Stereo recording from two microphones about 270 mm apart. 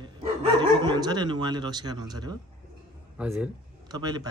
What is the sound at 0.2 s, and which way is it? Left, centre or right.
A man's voice, centre.